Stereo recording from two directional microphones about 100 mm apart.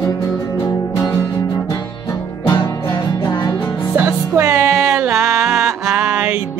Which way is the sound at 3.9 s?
20° right (ahead or behind).